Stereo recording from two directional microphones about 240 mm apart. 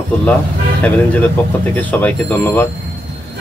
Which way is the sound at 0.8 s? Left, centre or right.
Centre.